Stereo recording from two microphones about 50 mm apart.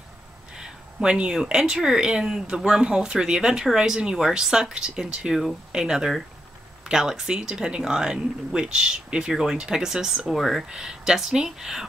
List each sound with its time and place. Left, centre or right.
1.0 s speech: centre
10.7 s speech: centre